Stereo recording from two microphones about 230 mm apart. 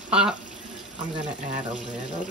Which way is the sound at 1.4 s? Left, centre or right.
Right.